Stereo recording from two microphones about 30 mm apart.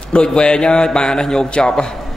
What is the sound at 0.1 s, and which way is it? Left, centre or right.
A man's voice, left.